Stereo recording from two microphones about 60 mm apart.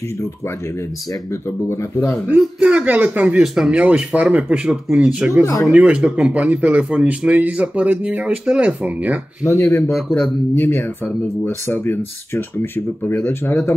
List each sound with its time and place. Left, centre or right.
2.3 s a man's voice: centre
3.5 s speech: centre
3.8 s a man's voice: right
9.5 s speech: left